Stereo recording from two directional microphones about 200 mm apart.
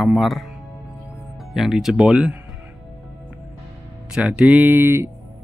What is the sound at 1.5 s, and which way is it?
Speech, centre (ahead or behind).